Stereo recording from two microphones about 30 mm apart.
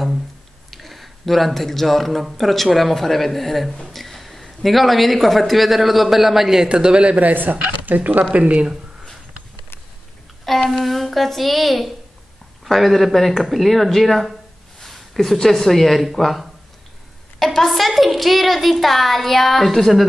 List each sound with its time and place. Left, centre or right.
0.7 s a man's voice: centre
6.7 s speech: right
7.2 s speech: right
10.4 s speech: centre
14.8 s a sound: centre
15.4 s speech: centre